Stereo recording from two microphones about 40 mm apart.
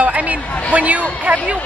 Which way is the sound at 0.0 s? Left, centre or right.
Right.